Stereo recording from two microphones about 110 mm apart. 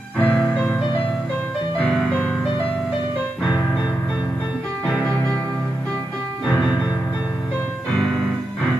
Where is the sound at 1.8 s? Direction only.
5° left (ahead or behind).